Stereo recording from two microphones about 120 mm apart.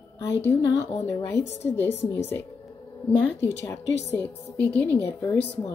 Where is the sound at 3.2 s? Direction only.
15° left (ahead or behind).